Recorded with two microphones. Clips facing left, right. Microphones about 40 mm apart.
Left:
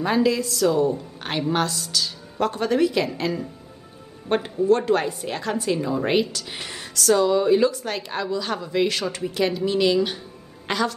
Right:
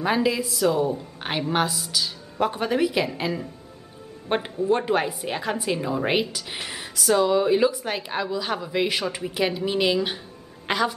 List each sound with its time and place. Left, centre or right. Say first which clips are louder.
0.0 s a woman's voice: left 2 dB; centre